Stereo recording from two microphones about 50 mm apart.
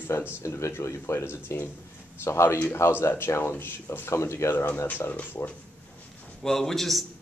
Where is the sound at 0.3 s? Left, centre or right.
Left.